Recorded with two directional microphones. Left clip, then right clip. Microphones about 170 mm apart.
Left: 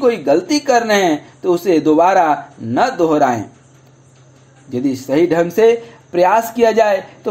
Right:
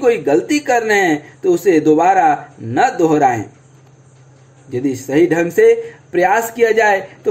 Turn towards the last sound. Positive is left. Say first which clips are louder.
# even
turn(degrees=35)  # may be behind; listen again after turning